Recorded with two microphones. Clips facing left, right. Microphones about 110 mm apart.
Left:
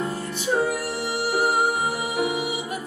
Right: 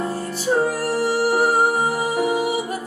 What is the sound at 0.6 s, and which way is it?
Music, 40° right (ahead or behind).